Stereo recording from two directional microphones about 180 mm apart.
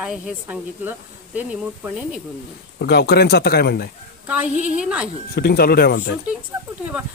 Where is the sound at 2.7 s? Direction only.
65° left (ahead or behind).